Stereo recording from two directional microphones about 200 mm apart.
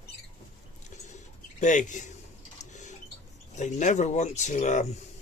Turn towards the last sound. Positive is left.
turn(degrees=35)  # may be behind; listen again after turning